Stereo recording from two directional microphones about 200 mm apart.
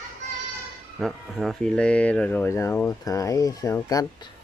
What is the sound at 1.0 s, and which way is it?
Speech, centre (ahead or behind).